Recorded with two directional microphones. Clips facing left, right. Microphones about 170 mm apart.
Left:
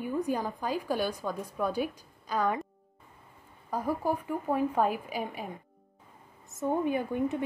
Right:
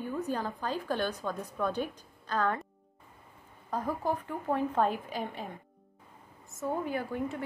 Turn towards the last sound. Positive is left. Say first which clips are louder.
# left 4 dB
turn(degrees=20)  # may be behind; listen again after turning